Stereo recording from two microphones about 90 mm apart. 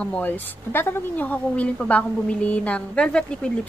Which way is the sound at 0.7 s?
25° left (ahead or behind).